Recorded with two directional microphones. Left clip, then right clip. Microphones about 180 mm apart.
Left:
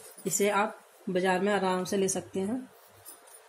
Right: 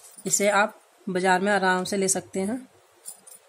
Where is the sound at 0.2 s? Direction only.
40° right (ahead or behind).